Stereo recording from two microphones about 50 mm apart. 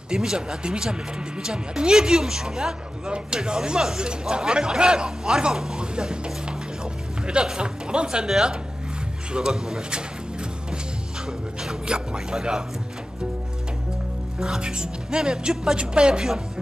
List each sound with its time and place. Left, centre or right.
0.1 s a man's voice: centre
11.6 s a man's voice: centre
14.4 s a man's voice: centre